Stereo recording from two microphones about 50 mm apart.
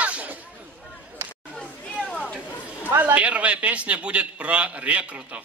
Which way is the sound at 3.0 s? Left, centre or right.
Right.